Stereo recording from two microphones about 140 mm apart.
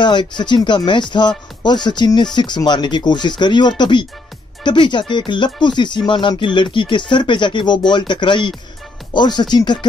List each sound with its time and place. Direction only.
0.0 s speech: 35° left (ahead or behind)